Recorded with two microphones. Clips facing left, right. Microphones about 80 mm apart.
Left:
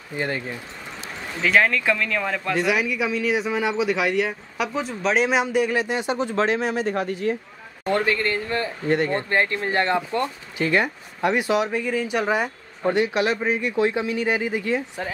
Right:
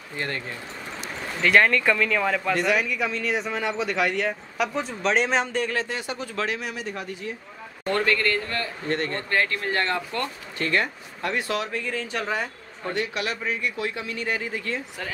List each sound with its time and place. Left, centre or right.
0.1 s speech: centre
1.4 s speech: centre; by 7.3 s left
7.8 s speech: centre